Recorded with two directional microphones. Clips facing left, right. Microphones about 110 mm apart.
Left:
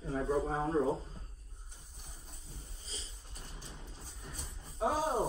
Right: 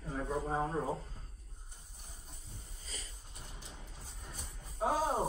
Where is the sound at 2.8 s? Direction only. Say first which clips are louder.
Even; 30° left (ahead or behind).